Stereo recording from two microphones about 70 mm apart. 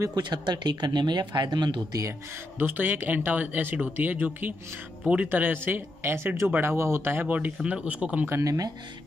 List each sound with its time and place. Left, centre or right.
0.1 s speech: right
2.6 s speech: right
7.6 s speech: centre
8.3 s speech: right